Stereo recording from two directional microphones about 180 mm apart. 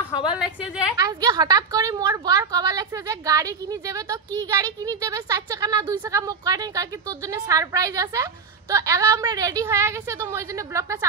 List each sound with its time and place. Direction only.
0.4 s a woman's voice: 5° right (ahead or behind)
0.9 s speech: 20° right (ahead or behind)